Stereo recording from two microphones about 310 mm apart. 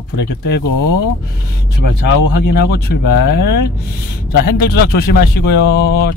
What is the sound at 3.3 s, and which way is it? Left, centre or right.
Speech, left.